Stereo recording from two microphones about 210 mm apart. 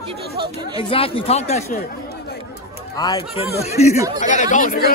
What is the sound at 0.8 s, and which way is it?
Speech, 25° left (ahead or behind).